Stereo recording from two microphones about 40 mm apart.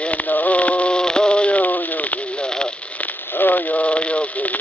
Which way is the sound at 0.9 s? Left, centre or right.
Left.